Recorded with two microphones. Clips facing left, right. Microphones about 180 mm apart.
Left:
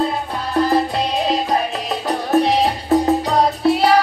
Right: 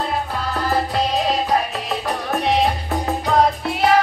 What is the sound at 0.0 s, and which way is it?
Music, 25° left (ahead or behind).